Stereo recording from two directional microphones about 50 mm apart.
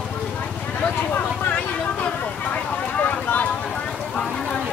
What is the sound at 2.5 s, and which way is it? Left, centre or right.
Vehicle, left.